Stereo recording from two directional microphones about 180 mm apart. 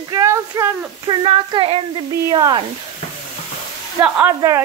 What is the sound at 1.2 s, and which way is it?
Speech, 30° right (ahead or behind).